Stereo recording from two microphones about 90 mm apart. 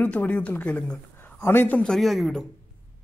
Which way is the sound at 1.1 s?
25° left (ahead or behind).